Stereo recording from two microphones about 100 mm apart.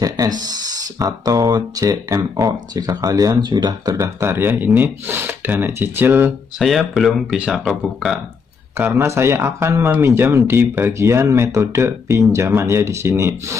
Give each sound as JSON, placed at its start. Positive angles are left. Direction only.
{"t": 0.0, "sound": "speech", "side_deg": -40}
{"t": 4.0, "sound": "speech", "side_deg": -25}
{"t": 6.6, "sound": "speech", "side_deg": 0}
{"t": 8.7, "sound": "speech", "side_deg": -25}